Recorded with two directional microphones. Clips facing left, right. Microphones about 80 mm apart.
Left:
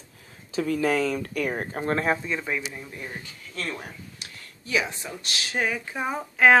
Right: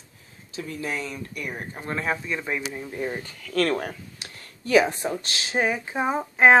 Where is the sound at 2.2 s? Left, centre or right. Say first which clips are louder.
Even; centre.